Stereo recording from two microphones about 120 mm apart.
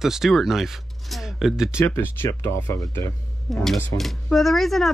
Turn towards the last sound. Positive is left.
turn(degrees=0)  # may be behind; listen again after turning